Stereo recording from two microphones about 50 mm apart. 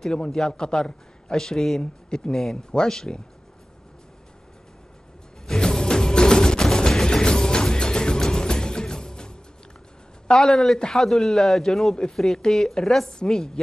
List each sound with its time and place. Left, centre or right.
0.0 s a man's voice: centre
5.5 s music: centre
10.2 s a man's voice: centre